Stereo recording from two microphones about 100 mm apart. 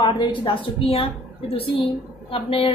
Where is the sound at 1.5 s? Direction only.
70° left (ahead or behind).